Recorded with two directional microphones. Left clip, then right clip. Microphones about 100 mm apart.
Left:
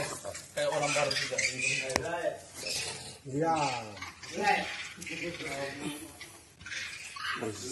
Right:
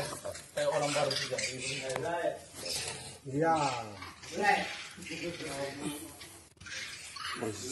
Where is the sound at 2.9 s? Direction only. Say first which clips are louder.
Left 1 dB; 15° left (ahead or behind).